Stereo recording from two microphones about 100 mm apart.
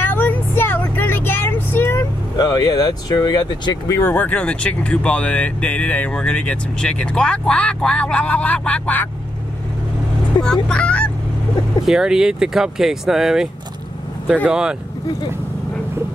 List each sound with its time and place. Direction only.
0.0 s vehicle: 20° left (ahead or behind)
2.3 s speech: 40° left (ahead or behind)
4.0 s speech: 20° left (ahead or behind)
10.4 s speech: 10° left (ahead or behind)
11.8 s speech: 5° right (ahead or behind)